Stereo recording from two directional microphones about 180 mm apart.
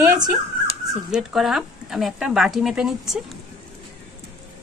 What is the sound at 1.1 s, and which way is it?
Speech, centre (ahead or behind).